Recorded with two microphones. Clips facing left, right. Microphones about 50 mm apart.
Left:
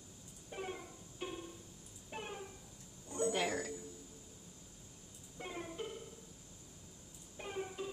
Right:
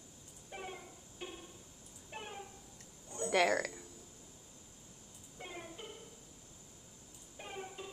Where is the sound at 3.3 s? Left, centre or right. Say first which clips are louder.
Right 6 dB; right.